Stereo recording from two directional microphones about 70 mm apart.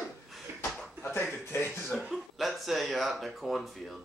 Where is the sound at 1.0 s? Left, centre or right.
Left.